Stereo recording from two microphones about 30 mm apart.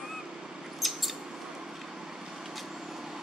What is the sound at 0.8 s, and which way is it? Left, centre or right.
Mouse, centre.